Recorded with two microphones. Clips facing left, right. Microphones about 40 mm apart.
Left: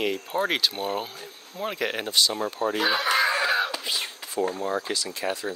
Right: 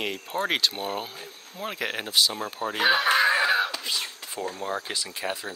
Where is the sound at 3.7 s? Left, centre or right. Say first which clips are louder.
Left 1 dB; centre.